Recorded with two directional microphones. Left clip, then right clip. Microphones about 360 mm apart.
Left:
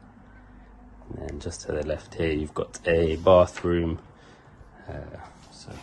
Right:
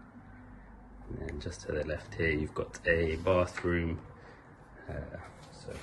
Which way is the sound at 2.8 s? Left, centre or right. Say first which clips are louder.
Left 6 dB; left.